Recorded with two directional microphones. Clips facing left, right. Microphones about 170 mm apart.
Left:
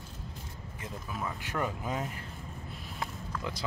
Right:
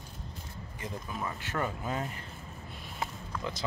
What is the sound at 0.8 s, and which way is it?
Speech, centre (ahead or behind).